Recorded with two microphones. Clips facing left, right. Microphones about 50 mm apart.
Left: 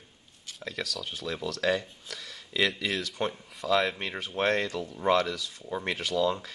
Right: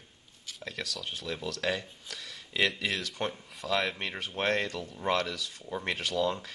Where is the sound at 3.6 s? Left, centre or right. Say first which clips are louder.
Left 4 dB; left.